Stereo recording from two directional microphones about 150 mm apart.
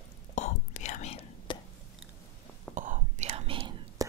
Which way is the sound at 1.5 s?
30° left (ahead or behind).